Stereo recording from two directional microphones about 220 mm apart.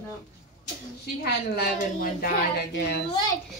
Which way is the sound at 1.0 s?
45° left (ahead or behind).